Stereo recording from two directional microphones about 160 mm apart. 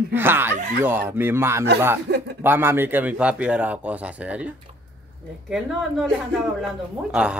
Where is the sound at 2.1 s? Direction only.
90° right.